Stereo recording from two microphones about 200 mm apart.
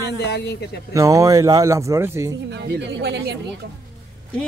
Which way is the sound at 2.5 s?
60° right (ahead or behind).